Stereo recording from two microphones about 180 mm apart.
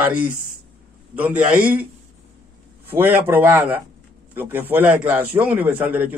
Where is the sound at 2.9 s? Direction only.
10° right (ahead or behind).